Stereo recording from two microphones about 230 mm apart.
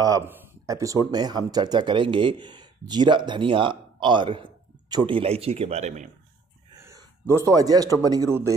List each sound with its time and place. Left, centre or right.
0.0 s speech: centre; by 6.0 s right
6.8 s a sound: centre
7.4 s speech: centre